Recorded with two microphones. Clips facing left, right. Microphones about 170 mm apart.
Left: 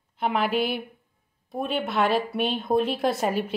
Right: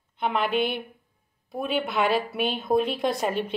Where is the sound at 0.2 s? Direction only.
5° left (ahead or behind).